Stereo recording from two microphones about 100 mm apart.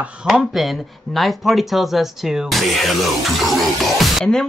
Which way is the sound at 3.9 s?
Centre (ahead or behind).